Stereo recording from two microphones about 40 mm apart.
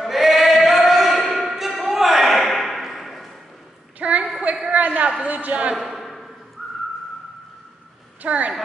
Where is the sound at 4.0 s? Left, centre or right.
Right.